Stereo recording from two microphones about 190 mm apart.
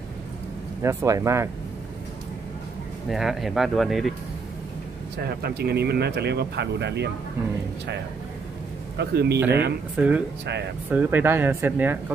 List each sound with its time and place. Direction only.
0.8 s speech: 15° right (ahead or behind)
3.1 s speech: centre (ahead or behind)
5.2 s speech: 55° right (ahead or behind)
8.9 s speech: 60° right (ahead or behind)
9.9 s speech: 5° right (ahead or behind)